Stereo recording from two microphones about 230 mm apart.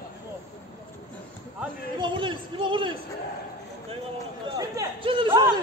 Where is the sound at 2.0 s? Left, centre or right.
Right.